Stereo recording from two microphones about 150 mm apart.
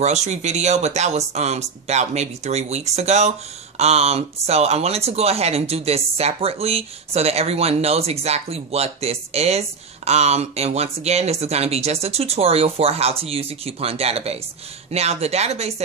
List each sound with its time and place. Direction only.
0.0 s speech: 50° right (ahead or behind)